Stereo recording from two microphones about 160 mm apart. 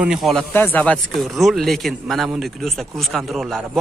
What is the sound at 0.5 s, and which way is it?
A man's voice, 10° left (ahead or behind).